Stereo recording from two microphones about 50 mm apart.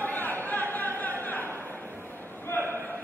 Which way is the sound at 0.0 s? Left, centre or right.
Left.